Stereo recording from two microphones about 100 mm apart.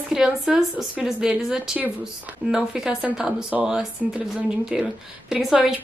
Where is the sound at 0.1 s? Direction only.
5° right (ahead or behind).